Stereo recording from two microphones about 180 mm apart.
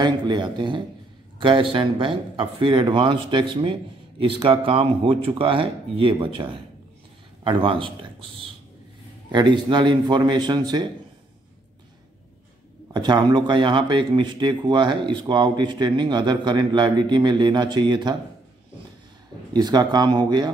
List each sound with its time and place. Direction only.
0.0 s speech: 25° right (ahead or behind)
12.8 s speech: 25° right (ahead or behind)
19.5 s speech: 20° right (ahead or behind)